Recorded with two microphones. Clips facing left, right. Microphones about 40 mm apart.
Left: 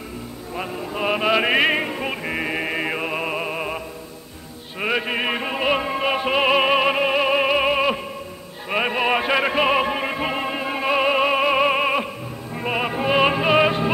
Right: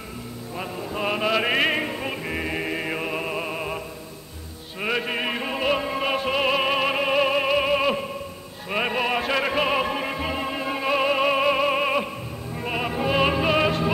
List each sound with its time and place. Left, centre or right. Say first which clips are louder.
0.6 s music: left 3 dB; centre